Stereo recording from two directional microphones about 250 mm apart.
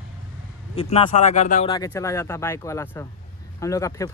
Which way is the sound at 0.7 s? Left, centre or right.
Left.